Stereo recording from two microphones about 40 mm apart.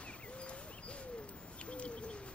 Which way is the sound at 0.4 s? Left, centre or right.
Left.